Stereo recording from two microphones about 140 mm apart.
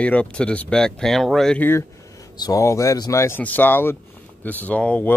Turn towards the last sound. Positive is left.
turn(degrees=10)  # may be behind; listen again after turning